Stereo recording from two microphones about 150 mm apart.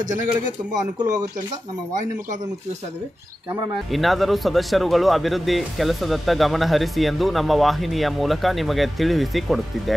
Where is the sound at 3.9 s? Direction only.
Centre (ahead or behind).